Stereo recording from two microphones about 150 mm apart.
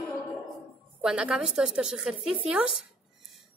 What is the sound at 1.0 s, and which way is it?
A woman's voice, 5° right (ahead or behind).